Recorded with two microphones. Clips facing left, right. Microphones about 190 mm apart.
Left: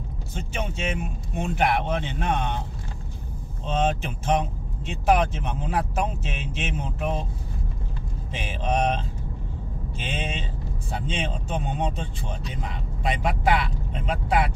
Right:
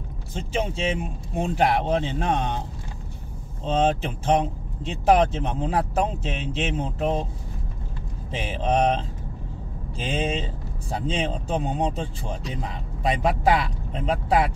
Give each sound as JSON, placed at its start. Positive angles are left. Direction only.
{"t": 0.3, "sound": "speech", "side_deg": -30}
{"t": 3.6, "sound": "speech", "side_deg": -30}
{"t": 8.3, "sound": "speech", "side_deg": -30}